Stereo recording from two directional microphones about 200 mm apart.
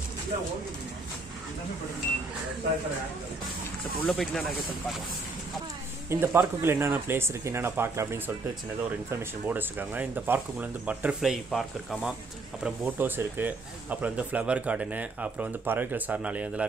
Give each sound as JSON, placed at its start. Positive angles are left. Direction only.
{"t": 4.0, "sound": "speech", "side_deg": 5}
{"t": 6.0, "sound": "speech", "side_deg": -10}